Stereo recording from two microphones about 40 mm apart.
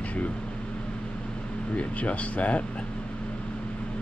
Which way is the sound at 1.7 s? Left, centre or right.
Left.